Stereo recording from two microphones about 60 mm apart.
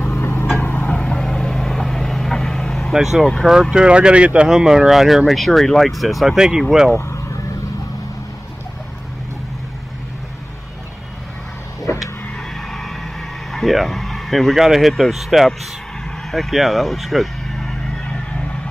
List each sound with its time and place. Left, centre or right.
0.0 s a sound: left
0.9 s vehicle: centre
2.9 s speech: centre
4.5 s speech: centre
6.3 s speech: centre
13.5 s speech: centre
16.3 s vehicle: centre